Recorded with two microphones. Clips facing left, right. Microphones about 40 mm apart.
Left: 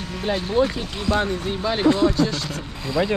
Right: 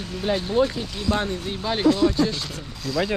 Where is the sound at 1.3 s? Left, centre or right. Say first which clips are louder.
Left 3 dB; centre.